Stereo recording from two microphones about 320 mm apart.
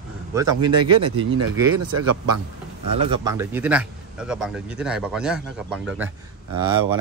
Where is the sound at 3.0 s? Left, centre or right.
Centre.